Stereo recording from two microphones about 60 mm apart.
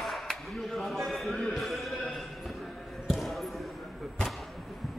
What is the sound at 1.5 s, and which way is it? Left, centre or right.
Music, centre.